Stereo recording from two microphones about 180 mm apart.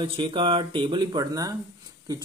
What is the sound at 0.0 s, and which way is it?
Speech, 30° right (ahead or behind).